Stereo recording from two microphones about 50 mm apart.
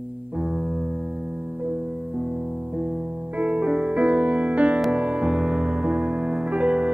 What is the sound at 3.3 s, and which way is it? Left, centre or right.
Music, centre.